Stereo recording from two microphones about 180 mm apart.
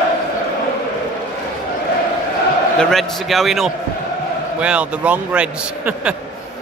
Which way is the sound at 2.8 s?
Centre (ahead or behind).